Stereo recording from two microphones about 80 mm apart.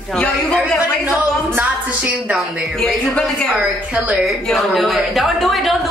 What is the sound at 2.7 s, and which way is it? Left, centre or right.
Speech, centre.